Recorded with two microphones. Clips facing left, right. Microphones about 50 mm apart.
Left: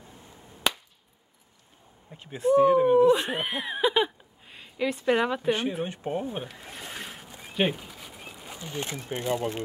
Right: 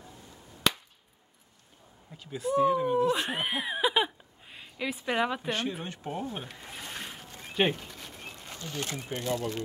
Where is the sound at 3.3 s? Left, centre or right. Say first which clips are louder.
Left 1 dB; centre.